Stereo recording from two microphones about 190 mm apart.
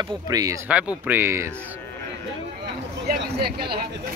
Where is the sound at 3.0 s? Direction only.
55° right (ahead or behind).